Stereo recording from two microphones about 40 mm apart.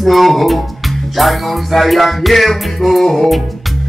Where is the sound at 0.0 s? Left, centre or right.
Centre.